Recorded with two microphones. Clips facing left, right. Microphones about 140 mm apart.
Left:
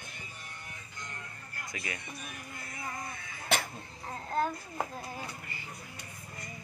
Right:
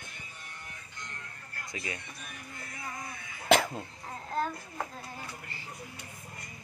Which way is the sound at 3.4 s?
90° right.